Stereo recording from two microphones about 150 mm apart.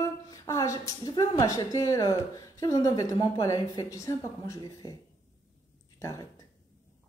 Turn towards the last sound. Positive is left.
turn(degrees=20)  # may be behind; listen again after turning